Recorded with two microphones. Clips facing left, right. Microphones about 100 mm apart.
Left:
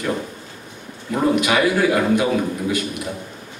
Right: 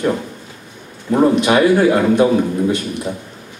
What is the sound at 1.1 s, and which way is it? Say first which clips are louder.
A man's voice: right 5 dB; 30° right (ahead or behind).